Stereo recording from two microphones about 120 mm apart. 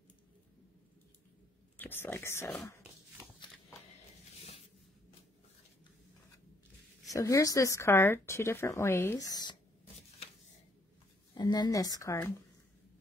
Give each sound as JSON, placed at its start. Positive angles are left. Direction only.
{"t": 1.8, "sound": "speech", "side_deg": 15}
{"t": 4.4, "sound": "a sound", "side_deg": 55}
{"t": 7.1, "sound": "speech", "side_deg": 25}
{"t": 9.3, "sound": "speech", "side_deg": 35}
{"t": 11.3, "sound": "speech", "side_deg": 35}